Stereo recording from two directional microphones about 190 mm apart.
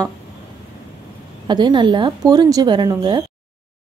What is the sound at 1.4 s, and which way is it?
Speech, 25° right (ahead or behind).